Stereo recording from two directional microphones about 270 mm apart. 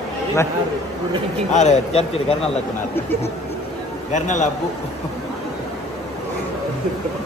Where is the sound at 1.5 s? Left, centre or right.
Left.